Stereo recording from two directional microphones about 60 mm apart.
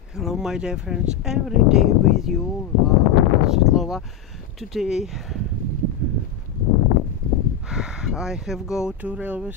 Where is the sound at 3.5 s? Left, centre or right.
Centre.